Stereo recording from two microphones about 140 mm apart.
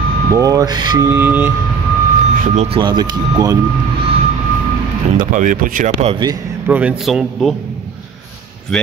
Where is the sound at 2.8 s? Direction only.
30° right (ahead or behind).